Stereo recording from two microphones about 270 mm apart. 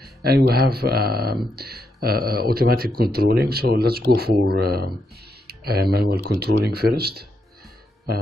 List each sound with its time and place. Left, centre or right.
0.0 s speech: right